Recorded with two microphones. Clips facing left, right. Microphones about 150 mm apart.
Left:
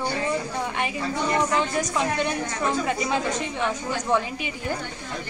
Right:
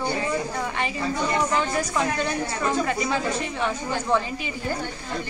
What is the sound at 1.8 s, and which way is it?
A woman's voice, 15° left (ahead or behind).